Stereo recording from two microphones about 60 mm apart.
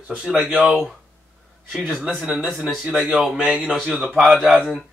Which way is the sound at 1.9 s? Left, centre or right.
Right.